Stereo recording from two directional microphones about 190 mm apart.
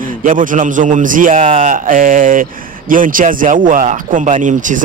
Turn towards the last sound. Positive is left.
turn(degrees=-45)  # may be behind; listen again after turning